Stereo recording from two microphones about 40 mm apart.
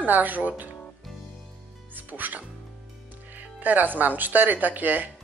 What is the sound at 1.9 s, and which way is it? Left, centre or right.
Music, right.